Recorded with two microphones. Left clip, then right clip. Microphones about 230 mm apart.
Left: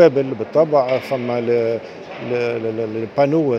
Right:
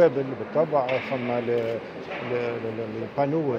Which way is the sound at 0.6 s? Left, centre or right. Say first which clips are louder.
Left 8 dB; left.